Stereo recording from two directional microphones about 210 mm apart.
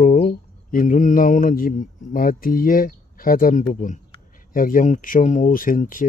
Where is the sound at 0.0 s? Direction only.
40° left (ahead or behind).